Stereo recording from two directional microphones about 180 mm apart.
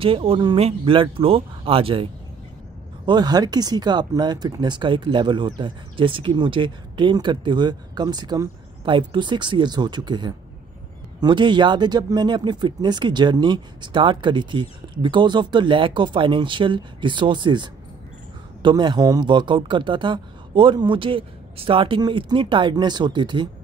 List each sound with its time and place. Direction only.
0.0 s speech: 30° right (ahead or behind)
3.1 s speech: 25° right (ahead or behind)